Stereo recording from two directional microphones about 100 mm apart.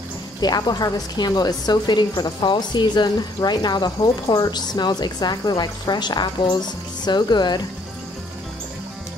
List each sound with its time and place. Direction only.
0.4 s a woman's voice: 45° left (ahead or behind)